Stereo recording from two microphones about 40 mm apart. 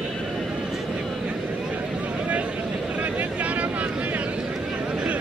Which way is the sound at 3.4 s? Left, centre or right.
Right.